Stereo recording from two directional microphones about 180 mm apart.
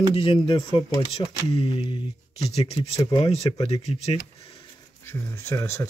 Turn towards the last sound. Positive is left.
turn(degrees=15)  # may be behind; listen again after turning